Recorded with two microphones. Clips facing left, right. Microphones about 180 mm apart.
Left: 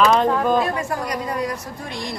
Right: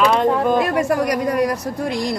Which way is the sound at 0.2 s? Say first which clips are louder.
Right 2 dB; 10° right (ahead or behind).